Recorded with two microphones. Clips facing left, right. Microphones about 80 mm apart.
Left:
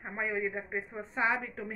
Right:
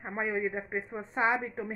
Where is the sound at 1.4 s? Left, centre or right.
Right.